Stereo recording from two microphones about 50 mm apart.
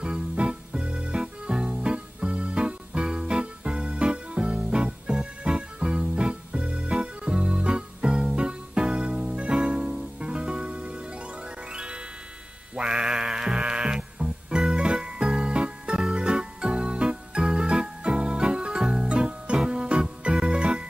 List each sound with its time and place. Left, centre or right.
0.0 s music: centre